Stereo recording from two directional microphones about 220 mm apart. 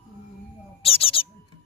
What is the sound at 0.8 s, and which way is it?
Owl, 25° left (ahead or behind).